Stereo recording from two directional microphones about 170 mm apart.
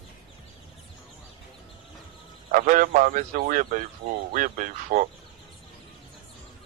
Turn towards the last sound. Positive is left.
turn(degrees=-45)  # may be behind; listen again after turning